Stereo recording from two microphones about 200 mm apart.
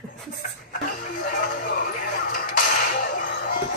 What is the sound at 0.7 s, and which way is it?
Music, 40° left (ahead or behind).